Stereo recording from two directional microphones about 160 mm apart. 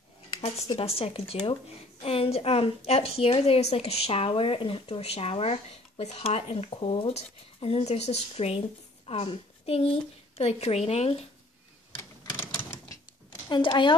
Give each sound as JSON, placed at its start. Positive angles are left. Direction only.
{"t": 0.7, "sound": "a woman's voice", "side_deg": 35}
{"t": 12.0, "sound": "typewriter", "side_deg": 15}
{"t": 13.5, "sound": "a woman's voice", "side_deg": 30}